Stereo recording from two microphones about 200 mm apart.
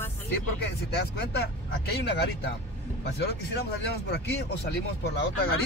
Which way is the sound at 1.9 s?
55° left (ahead or behind).